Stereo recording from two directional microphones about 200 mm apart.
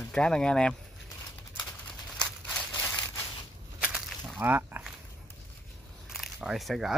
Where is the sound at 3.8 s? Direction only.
5° right (ahead or behind).